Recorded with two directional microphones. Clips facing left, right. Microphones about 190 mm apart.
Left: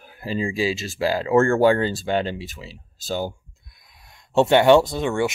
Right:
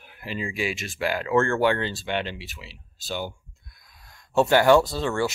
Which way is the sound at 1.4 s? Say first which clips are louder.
Left 5 dB; 40° left (ahead or behind).